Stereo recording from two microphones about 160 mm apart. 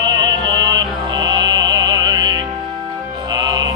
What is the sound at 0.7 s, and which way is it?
Music, 25° right (ahead or behind).